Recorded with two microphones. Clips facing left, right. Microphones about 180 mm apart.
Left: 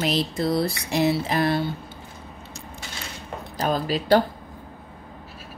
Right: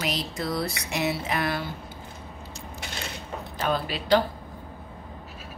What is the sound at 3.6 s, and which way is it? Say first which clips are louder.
Speech: left 4 dB; 40° left (ahead or behind).